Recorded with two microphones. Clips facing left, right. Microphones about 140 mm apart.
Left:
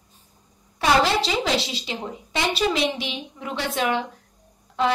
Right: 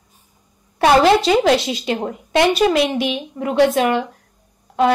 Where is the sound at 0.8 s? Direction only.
55° right (ahead or behind).